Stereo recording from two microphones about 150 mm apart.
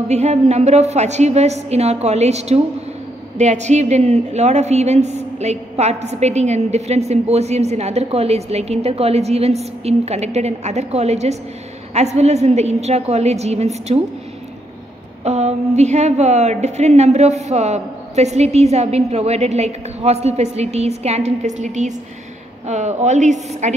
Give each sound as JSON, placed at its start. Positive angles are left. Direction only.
{"t": 0.1, "sound": "a woman's voice", "side_deg": -45}
{"t": 15.2, "sound": "a woman's voice", "side_deg": -45}